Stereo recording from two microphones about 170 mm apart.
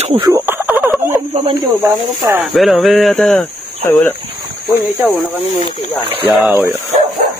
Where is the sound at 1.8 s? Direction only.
15° right (ahead or behind).